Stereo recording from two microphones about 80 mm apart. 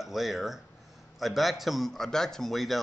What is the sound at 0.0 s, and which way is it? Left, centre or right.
Speech, centre.